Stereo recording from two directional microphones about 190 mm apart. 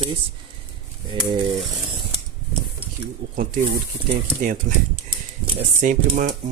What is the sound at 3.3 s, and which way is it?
Speech, 45° right (ahead or behind).